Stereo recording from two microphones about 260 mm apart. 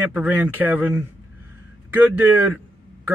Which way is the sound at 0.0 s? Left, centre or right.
Centre.